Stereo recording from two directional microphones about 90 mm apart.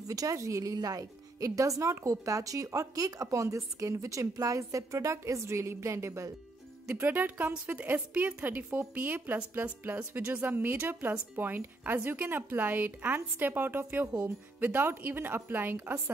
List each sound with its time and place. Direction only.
0.0 s speech: 40° right (ahead or behind)
6.9 s speech: 20° right (ahead or behind)